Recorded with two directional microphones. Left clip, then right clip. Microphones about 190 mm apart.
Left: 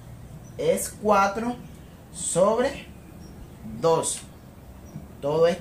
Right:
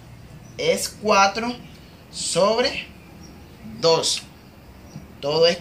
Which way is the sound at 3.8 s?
20° left (ahead or behind).